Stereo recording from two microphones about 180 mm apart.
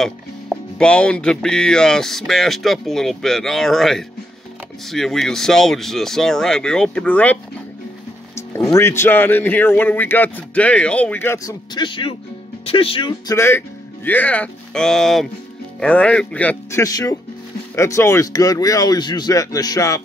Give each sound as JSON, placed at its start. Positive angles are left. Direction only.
{"t": 0.0, "sound": "speech", "side_deg": 5}
{"t": 8.7, "sound": "speech", "side_deg": 15}
{"t": 13.3, "sound": "speech", "side_deg": 15}
{"t": 16.8, "sound": "speech", "side_deg": 20}